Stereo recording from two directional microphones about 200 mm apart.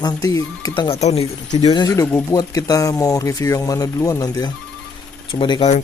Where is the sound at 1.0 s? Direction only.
35° left (ahead or behind).